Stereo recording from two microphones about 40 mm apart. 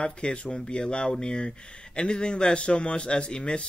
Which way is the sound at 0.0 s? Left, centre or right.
Left.